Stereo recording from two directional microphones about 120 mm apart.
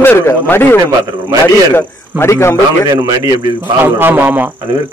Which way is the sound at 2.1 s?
20° left (ahead or behind).